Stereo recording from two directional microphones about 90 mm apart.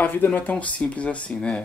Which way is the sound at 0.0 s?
20° left (ahead or behind).